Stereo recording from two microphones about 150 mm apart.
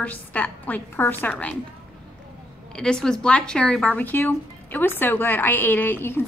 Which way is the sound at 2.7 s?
5° left (ahead or behind).